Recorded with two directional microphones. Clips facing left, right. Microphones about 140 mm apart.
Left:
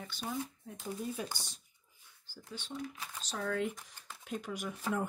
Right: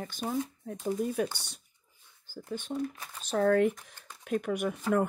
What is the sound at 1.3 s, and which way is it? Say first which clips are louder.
Speech: even; 65° right (ahead or behind).